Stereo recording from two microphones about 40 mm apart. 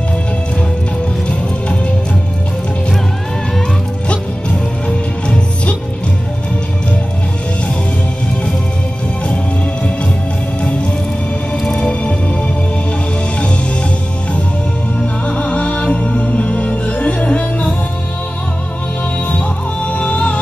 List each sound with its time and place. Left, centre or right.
4.1 s music: left
11.6 s music: centre
11.9 s music: left
15.2 s music: left
19.9 s music: left